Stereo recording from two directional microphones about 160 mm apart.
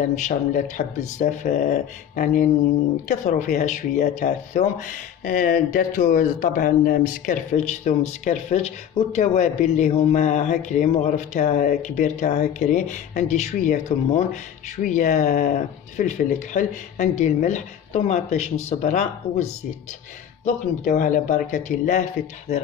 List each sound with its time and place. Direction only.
0.1 s speech: 50° left (ahead or behind)